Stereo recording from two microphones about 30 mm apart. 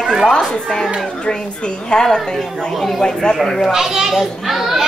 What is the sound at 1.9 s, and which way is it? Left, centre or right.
A woman's voice, left.